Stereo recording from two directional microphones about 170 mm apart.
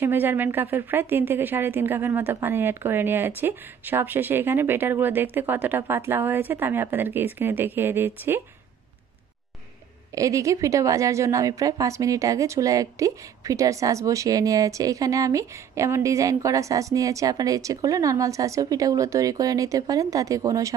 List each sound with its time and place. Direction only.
0.0 s a woman's voice: 10° right (ahead or behind)
10.1 s a woman's voice: 20° right (ahead or behind)